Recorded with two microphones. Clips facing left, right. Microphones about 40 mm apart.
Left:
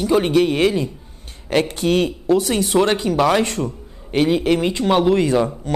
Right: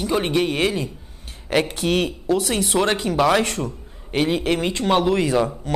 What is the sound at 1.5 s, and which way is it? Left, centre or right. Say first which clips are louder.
Speech: left 2 dB; centre.